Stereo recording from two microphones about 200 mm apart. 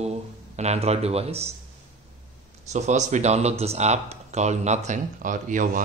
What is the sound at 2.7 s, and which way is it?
Speech, 35° right (ahead or behind).